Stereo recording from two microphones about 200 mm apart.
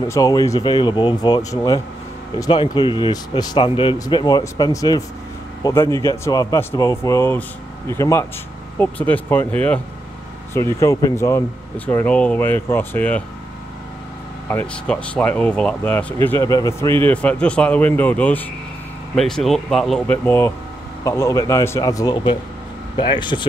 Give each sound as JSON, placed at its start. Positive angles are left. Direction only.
{"t": 0.1, "sound": "speech", "side_deg": 15}
{"t": 14.5, "sound": "speech", "side_deg": 10}